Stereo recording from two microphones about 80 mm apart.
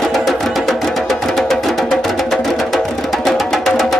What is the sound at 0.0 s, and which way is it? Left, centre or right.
Music, centre.